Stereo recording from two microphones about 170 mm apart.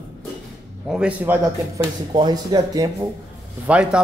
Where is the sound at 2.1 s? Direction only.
25° right (ahead or behind).